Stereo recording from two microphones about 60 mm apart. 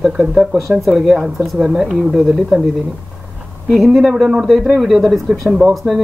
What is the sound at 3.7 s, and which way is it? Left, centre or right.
Speech, centre.